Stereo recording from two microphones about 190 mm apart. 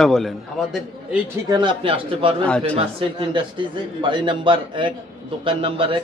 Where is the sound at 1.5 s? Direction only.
25° right (ahead or behind).